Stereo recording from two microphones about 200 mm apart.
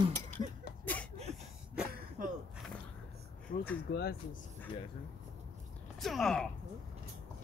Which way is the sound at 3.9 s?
55° left (ahead or behind).